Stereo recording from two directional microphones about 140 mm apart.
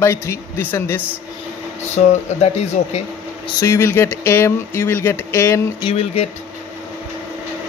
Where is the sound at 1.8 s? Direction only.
55° left (ahead or behind).